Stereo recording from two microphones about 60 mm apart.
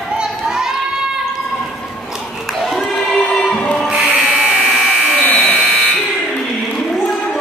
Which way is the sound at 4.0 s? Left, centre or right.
Right.